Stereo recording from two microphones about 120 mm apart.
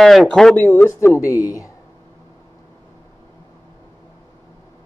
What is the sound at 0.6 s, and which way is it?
Speech, 15° left (ahead or behind).